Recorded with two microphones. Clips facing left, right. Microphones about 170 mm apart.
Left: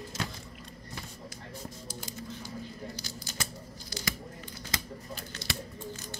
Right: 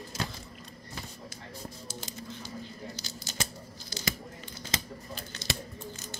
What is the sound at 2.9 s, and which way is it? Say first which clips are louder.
Scissors: right 1 dB; 25° right (ahead or behind).